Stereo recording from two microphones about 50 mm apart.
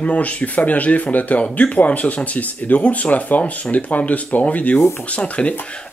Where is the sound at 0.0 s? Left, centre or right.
Left.